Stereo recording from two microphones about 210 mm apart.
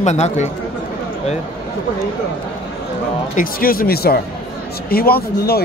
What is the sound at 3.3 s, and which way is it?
Speech, 45° left (ahead or behind).